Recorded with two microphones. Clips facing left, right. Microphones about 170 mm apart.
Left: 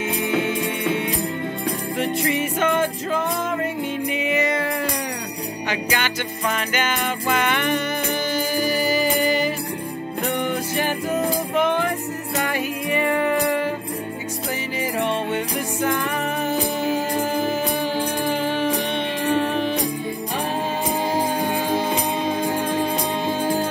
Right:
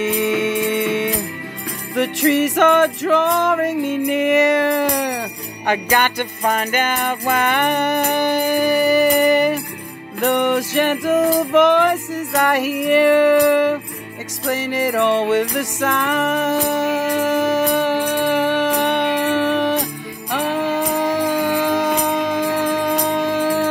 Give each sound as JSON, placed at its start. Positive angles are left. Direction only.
{"t": 0.7, "sound": "music", "side_deg": -75}
{"t": 5.7, "sound": "music", "side_deg": -50}
{"t": 10.2, "sound": "music", "side_deg": -75}